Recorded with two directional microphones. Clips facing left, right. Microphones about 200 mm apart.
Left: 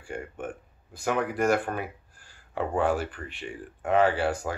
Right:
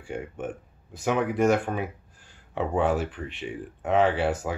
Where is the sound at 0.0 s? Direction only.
Centre (ahead or behind).